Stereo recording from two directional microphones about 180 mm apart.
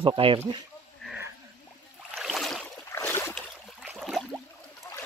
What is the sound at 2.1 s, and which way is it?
Boat, centre (ahead or behind).